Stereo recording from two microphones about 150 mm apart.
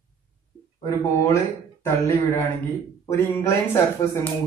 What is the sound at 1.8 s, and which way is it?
Speech, 15° left (ahead or behind).